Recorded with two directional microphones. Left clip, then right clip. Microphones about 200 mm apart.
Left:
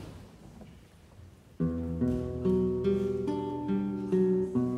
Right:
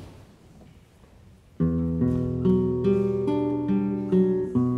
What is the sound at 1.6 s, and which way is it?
Music, 30° right (ahead or behind).